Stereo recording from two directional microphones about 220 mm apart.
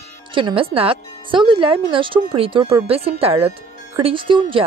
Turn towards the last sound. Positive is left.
turn(degrees=-20)  # may be behind; listen again after turning